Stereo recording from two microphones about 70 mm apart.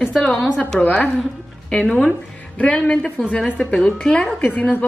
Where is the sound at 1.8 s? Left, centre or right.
Centre.